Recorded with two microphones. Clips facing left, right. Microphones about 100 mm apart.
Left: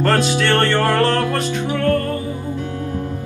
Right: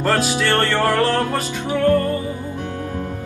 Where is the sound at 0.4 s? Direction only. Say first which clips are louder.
Left 2 dB; 5° right (ahead or behind).